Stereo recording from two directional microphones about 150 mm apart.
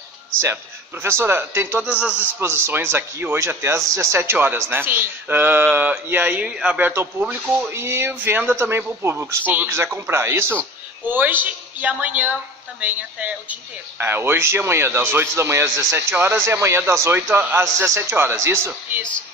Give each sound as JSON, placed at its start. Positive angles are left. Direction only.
{"t": 1.0, "sound": "a man's voice", "side_deg": -15}